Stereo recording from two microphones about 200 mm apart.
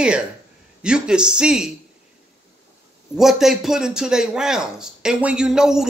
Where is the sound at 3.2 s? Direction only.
Centre (ahead or behind).